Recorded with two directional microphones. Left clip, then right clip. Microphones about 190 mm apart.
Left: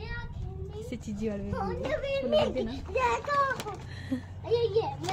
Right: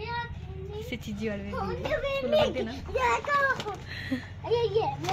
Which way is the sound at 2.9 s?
20° right (ahead or behind).